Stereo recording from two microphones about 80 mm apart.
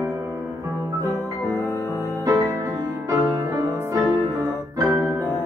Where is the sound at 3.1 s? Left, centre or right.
Right.